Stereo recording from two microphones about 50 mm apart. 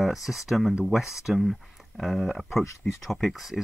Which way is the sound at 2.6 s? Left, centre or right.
Left.